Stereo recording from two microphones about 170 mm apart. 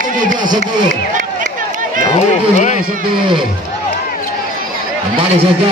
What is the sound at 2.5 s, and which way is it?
Speech, 45° left (ahead or behind).